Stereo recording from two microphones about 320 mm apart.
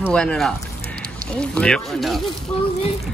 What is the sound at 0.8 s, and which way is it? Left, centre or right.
Duck, right.